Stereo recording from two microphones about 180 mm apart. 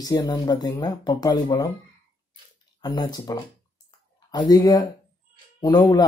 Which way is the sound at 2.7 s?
25° left (ahead or behind).